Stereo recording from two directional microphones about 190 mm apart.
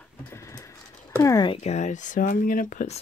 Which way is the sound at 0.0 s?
15° left (ahead or behind).